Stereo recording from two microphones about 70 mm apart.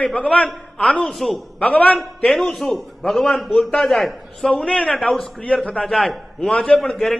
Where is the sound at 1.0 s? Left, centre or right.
Centre.